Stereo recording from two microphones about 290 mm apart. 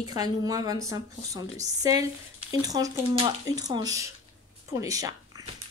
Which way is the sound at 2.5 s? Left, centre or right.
Centre.